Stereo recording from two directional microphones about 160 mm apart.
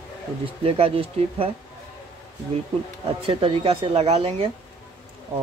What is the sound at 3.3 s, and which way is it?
Speech, 35° right (ahead or behind).